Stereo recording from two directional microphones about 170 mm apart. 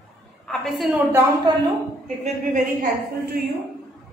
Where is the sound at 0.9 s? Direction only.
20° right (ahead or behind).